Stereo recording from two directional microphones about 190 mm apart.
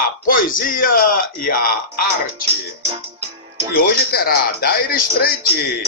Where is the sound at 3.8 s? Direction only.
50° left (ahead or behind).